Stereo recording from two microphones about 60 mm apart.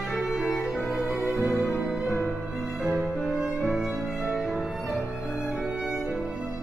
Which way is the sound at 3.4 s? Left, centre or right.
Centre.